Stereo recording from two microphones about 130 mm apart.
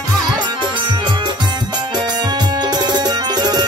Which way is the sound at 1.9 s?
35° right (ahead or behind).